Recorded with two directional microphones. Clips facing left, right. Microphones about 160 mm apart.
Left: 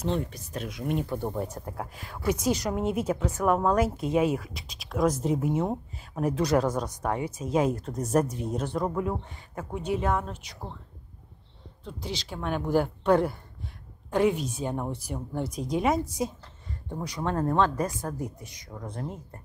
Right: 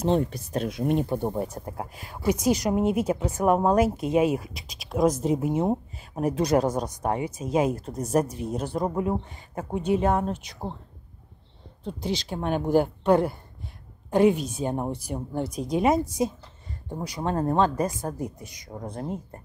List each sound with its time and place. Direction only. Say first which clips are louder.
0.1 s speech: right 6 dB; 35° right (ahead or behind)
11.8 s speech: right 6 dB; 20° right (ahead or behind)
14.9 s speech: right 3 dB; 15° right (ahead or behind)